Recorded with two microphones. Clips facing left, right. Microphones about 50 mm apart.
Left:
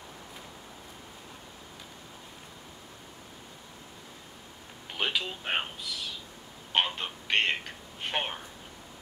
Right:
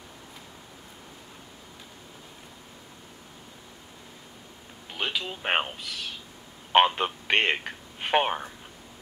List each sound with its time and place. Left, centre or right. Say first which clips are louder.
4.9 s a sound: even; centre
5.4 s speech: right 5 dB; right
6.7 s a man's voice: right 9 dB; right